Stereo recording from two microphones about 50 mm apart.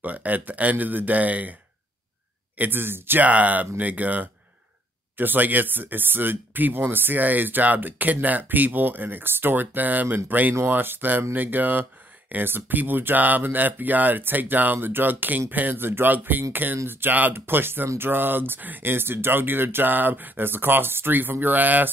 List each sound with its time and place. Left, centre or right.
0.0 s speech: right
3.3 s speech: right